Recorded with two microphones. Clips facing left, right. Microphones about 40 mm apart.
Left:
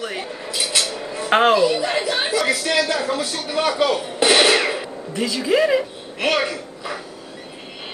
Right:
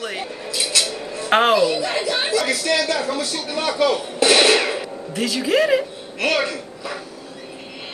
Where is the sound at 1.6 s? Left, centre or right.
Centre.